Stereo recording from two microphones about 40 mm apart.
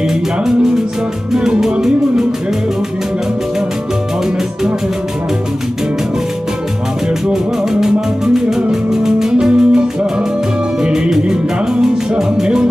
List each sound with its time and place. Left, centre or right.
0.0 s music: centre
7.8 s music: centre
9.5 s music: right